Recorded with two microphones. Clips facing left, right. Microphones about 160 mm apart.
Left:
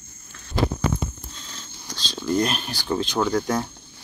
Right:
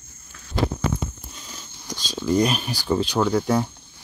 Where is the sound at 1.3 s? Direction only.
10° right (ahead or behind).